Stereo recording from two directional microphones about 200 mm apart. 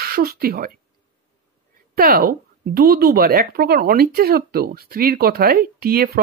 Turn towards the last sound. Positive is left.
turn(degrees=-50)  # may be behind; listen again after turning